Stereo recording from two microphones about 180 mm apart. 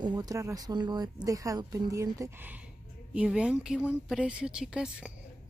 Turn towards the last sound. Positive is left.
turn(degrees=-5)  # may be behind; listen again after turning